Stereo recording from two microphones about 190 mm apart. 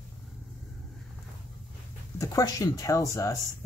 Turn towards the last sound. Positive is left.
turn(degrees=15)  # may be behind; listen again after turning